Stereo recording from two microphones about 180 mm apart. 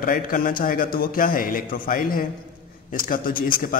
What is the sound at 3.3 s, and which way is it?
Speech, 25° left (ahead or behind).